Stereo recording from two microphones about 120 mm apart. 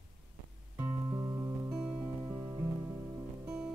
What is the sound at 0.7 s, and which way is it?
Music, 20° right (ahead or behind).